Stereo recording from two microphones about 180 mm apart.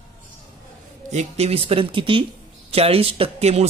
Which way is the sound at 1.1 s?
40° right (ahead or behind).